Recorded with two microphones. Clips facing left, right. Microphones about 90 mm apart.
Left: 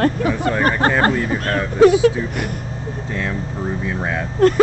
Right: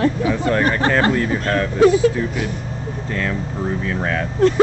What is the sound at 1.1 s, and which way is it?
Speech, 10° left (ahead or behind).